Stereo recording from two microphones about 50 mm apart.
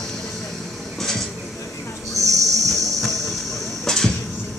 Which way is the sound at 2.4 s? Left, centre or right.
Centre.